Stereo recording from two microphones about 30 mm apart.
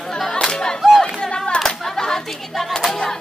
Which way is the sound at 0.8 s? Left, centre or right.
Centre.